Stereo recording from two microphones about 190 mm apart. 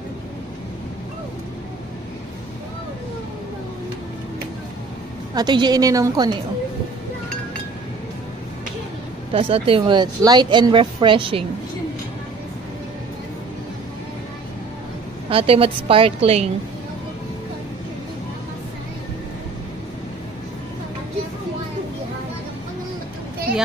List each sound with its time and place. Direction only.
5.3 s a woman's voice: 25° right (ahead or behind)
9.3 s a woman's voice: 30° right (ahead or behind)
15.2 s a woman's voice: 30° right (ahead or behind)